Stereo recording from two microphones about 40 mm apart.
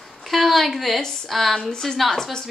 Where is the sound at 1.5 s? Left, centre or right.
Centre.